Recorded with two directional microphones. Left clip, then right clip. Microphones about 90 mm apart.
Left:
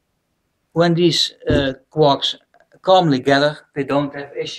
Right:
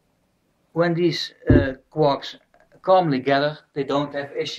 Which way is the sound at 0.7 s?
5° right (ahead or behind).